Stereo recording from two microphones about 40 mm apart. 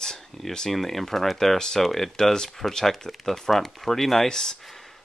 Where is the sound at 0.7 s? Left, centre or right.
Centre.